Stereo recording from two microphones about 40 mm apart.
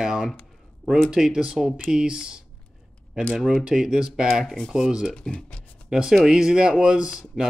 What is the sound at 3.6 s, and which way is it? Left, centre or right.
Speech, centre.